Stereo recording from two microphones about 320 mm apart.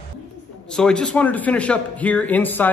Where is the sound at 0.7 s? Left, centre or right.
Centre.